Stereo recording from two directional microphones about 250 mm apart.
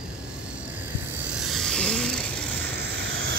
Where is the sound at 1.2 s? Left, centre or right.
Centre.